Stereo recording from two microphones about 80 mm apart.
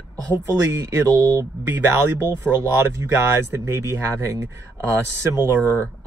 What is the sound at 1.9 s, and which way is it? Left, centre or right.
Speech, right.